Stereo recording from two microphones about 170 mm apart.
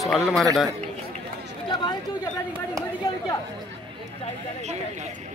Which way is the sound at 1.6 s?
30° left (ahead or behind).